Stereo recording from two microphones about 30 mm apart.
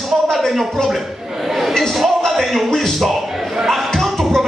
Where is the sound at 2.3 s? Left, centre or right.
Centre.